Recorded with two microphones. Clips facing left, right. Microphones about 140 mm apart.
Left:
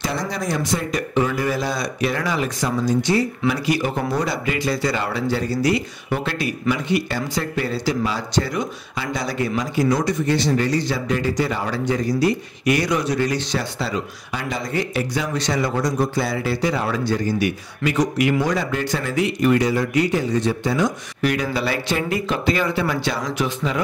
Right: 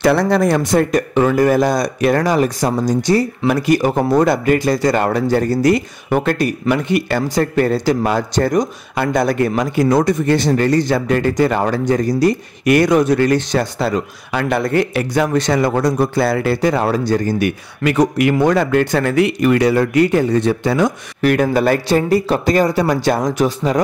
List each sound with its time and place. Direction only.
0.0 s speech: 65° right (ahead or behind)
16.8 s speech: 40° right (ahead or behind)